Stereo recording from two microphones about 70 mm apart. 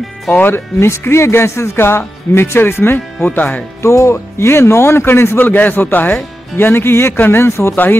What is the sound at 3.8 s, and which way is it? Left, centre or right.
Speech, left.